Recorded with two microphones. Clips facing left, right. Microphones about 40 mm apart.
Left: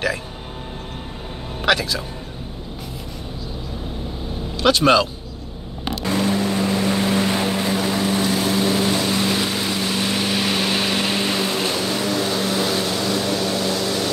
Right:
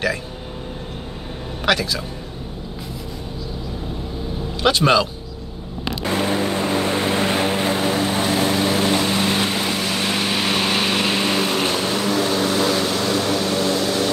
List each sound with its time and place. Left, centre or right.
1.7 s speech: centre
4.6 s speech: centre
6.0 s vehicle: centre